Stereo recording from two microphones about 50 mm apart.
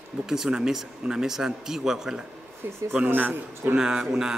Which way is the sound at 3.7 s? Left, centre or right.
Centre.